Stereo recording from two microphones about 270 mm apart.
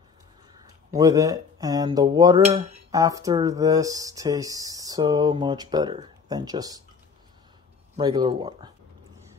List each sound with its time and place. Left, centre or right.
0.9 s speech: centre
7.9 s speech: centre